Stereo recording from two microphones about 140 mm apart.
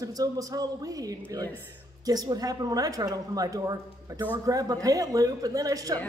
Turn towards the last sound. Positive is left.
turn(degrees=-25)  # may be behind; listen again after turning